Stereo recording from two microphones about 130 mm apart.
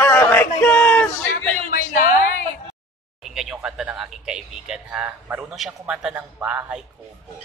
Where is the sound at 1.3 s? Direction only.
90° left.